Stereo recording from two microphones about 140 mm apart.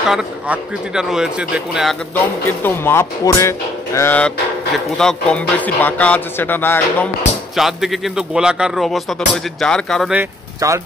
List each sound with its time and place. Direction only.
0.1 s speech: 5° right (ahead or behind)
2.6 s a man's voice: 15° left (ahead or behind)
7.5 s speech: centre (ahead or behind)
10.6 s speech: 20° right (ahead or behind)